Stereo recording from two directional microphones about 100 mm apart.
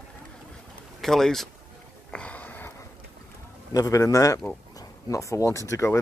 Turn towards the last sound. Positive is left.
turn(degrees=30)  # may be behind; listen again after turning